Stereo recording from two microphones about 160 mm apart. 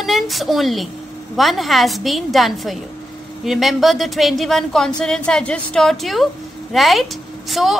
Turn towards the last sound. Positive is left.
turn(degrees=0)  # may be behind; listen again after turning